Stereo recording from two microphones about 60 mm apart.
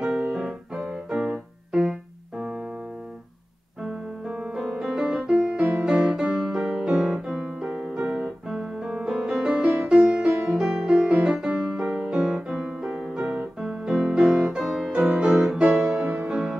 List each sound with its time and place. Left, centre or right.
0.0 s keyboard: centre
3.8 s music: centre
5.7 s music: right
5.9 s music: centre
9.6 s music: centre
15.9 s music: right
16.3 s music: centre